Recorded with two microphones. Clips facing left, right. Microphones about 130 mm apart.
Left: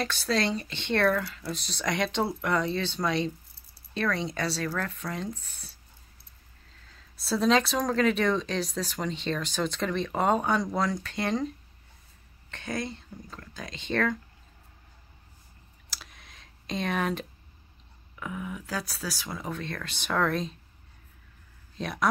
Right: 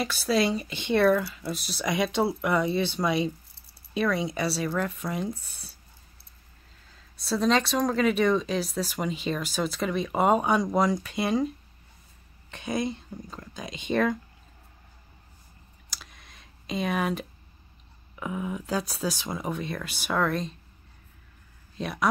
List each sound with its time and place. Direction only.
0.0 s speech: 10° right (ahead or behind)
7.2 s speech: centre (ahead or behind)
15.9 s clicking: centre (ahead or behind)
18.1 s speech: 20° right (ahead or behind); by 20.5 s centre (ahead or behind)
21.7 s speech: centre (ahead or behind)